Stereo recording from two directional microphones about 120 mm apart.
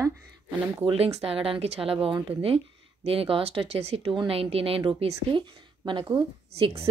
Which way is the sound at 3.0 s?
50° right (ahead or behind).